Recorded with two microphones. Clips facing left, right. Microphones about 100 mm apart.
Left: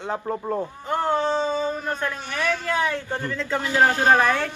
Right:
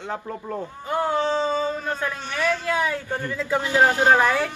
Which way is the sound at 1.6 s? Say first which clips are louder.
Even; 15° right (ahead or behind).